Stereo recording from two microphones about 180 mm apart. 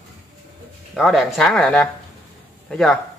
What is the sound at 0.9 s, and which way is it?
Speech, centre (ahead or behind).